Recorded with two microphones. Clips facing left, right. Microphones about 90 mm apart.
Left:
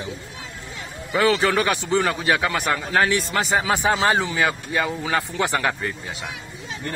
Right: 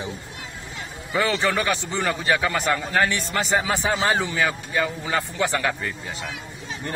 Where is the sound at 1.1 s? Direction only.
15° left (ahead or behind).